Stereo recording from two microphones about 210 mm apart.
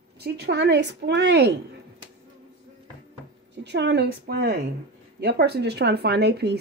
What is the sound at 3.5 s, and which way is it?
A woman's voice, 55° right (ahead or behind).